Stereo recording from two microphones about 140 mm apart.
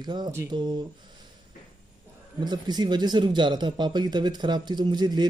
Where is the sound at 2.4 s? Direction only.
30° right (ahead or behind).